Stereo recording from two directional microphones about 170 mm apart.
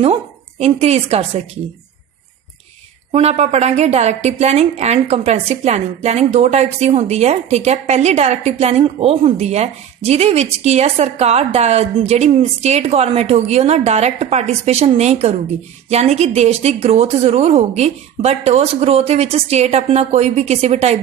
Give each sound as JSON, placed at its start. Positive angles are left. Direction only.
{"t": 0.0, "sound": "a woman's voice", "side_deg": -35}
{"t": 3.1, "sound": "a woman's voice", "side_deg": -40}